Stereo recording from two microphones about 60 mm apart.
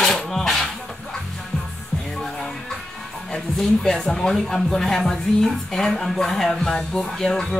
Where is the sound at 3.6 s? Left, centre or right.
Centre.